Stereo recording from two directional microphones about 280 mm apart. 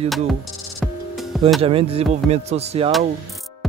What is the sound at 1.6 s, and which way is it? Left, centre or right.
Speech, right.